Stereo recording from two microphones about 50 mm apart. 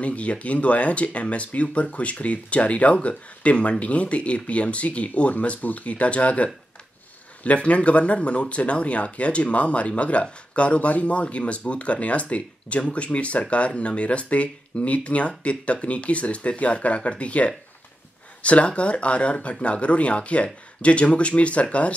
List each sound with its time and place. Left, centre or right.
0.0 s speech: left